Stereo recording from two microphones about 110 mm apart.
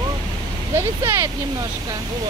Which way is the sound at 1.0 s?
25° right (ahead or behind).